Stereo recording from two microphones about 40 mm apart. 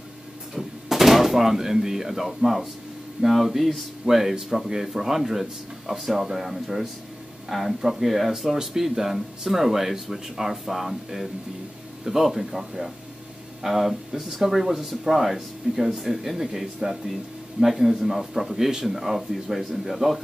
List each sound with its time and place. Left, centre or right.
0.6 s a man's voice: centre
15.7 s speech: right
16.0 s a man's voice: centre